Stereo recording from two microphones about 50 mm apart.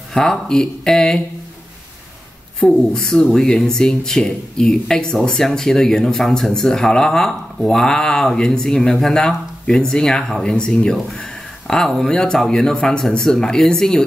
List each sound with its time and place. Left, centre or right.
0.1 s speech: centre
2.9 s speech: centre